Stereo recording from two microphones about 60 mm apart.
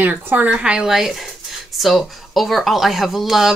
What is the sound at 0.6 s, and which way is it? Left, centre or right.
A woman's voice, centre.